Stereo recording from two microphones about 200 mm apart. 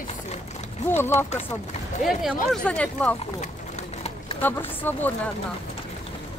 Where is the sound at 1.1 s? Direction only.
35° left (ahead or behind).